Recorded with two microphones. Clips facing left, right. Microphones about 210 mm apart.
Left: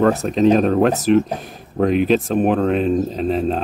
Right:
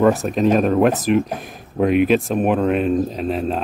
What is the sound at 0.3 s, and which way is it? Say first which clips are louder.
A man's voice: left 2 dB; 5° right (ahead or behind).